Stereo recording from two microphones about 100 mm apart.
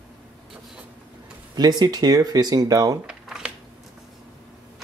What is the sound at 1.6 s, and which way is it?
Speech, 45° right (ahead or behind).